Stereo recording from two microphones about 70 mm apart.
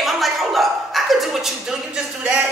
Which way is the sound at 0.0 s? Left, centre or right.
Centre.